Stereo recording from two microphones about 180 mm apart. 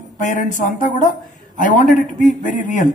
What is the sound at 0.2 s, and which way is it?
Speech, 45° left (ahead or behind).